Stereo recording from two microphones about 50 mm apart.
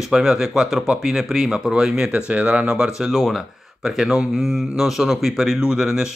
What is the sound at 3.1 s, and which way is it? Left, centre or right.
Speech, centre.